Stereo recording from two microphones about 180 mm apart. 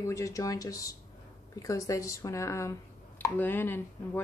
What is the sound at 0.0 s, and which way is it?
Speech, 15° left (ahead or behind).